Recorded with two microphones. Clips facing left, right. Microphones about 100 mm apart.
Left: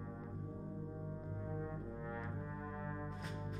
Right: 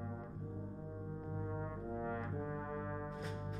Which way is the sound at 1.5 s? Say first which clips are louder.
Right 1 dB; 45° right (ahead or behind).